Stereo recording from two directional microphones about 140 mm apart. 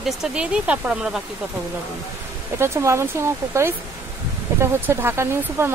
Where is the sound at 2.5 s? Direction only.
20° right (ahead or behind).